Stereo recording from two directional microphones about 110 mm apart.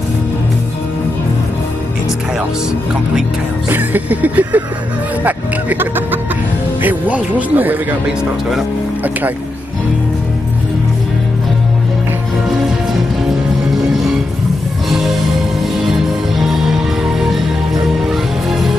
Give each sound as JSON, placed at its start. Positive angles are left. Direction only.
{"t": 3.6, "sound": "music", "side_deg": -15}
{"t": 16.3, "sound": "music", "side_deg": -5}